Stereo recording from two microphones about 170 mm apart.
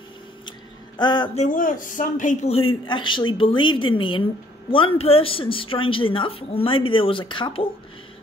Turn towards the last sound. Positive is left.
turn(degrees=30)  # may be behind; listen again after turning